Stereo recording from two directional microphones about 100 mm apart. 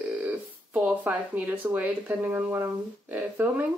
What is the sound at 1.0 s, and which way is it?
Speech, 15° right (ahead or behind).